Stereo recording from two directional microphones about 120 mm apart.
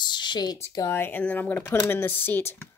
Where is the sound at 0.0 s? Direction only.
40° left (ahead or behind).